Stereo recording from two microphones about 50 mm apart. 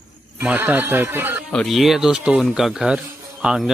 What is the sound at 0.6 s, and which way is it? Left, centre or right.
Speech, right.